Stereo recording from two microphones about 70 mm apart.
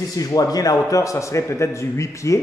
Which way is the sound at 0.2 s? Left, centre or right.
Left.